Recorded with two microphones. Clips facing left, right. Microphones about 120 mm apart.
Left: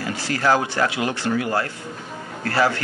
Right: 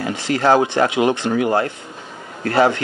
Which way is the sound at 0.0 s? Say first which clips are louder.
Right 4 dB; 20° right (ahead or behind).